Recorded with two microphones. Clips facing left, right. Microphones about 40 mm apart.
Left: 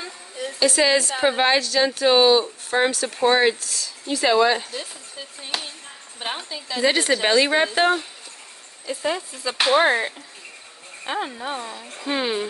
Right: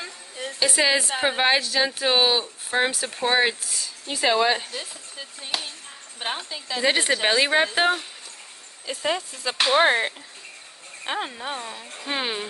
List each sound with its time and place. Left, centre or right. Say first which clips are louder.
0.6 s a woman's voice: left 3 dB; centre
1.2 s a woman's voice: left 2 dB; centre
3.7 s speech: left 4 dB; centre
4.3 s a woman's voice: left 3 dB; centre
9.0 s speech: even; right
9.8 s speech: even; right
11.1 s speech: left 2 dB; right
11.5 s a woman's voice: left 2 dB; centre